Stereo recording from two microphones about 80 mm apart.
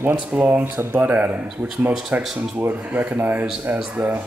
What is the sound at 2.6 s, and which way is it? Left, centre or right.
Speech, right.